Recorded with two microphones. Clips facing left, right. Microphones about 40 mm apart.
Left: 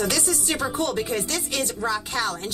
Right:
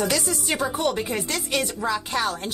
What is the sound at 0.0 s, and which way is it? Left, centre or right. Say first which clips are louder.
Speech: even; centre.